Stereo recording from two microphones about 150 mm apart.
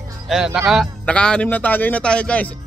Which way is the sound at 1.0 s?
5° left (ahead or behind).